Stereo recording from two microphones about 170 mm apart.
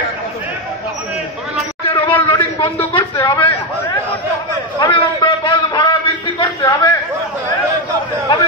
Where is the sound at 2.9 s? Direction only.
30° left (ahead or behind).